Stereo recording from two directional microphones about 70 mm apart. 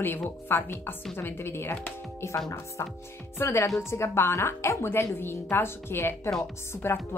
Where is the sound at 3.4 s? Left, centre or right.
Left.